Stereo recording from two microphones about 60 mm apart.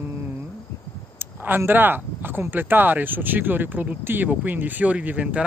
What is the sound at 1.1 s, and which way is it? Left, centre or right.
Speech, right.